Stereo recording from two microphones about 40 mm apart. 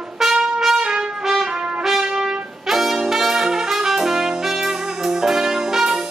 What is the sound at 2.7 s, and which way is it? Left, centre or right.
Brass instrument, centre.